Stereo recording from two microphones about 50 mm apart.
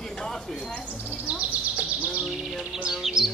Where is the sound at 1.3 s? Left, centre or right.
Centre.